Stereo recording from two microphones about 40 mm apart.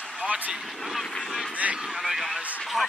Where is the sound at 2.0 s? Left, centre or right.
Centre.